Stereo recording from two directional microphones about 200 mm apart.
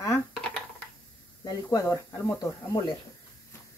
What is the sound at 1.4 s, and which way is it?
Speech, 20° left (ahead or behind).